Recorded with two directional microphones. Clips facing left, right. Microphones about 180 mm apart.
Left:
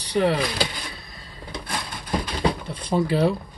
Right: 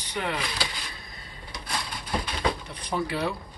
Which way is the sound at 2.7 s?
25° left (ahead or behind).